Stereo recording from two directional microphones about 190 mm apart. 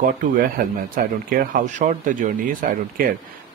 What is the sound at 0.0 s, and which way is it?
Speech, 45° right (ahead or behind).